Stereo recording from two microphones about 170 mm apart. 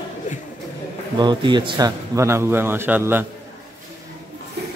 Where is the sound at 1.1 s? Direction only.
25° right (ahead or behind).